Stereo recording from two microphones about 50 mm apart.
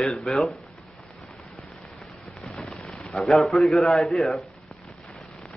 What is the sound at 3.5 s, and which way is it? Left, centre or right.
Speech, centre.